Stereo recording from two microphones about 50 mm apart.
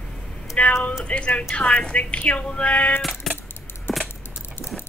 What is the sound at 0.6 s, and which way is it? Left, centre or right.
Music, left.